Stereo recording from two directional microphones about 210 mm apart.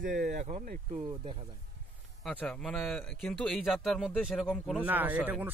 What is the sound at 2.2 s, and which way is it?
Speech, 5° left (ahead or behind).